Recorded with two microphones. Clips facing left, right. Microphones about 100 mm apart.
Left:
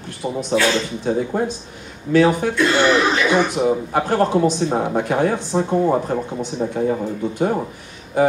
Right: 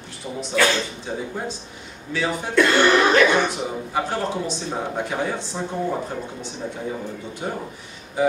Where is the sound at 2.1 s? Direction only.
60° left (ahead or behind).